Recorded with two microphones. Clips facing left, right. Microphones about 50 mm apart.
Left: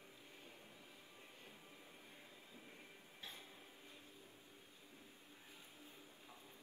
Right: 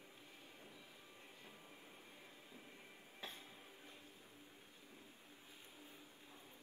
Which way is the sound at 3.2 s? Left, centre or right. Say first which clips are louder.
Right 3 dB; right.